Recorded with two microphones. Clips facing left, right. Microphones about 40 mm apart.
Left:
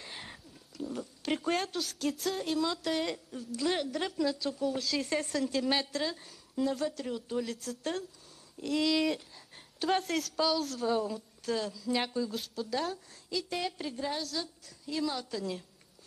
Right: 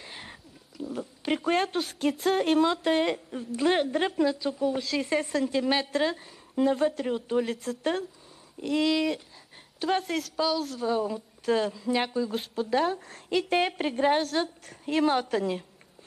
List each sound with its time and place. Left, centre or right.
0.0 s a sound: centre
1.2 s speech: centre
1.6 s a woman's voice: right
2.3 s a woman's voice: right
2.6 s a woman's voice: right
4.3 s a woman's voice: right
5.9 s a woman's voice: right
8.7 s a woman's voice: centre
11.5 s a woman's voice: right
11.9 s a woman's voice: centre
12.4 s a woman's voice: right
13.1 s a woman's voice: right